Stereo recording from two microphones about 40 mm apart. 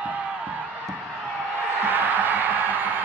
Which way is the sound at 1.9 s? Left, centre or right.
Right.